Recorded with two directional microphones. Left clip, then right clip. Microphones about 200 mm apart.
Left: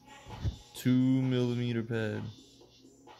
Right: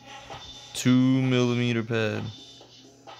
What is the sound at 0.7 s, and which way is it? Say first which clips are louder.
Speech: right 6 dB; 20° right (ahead or behind).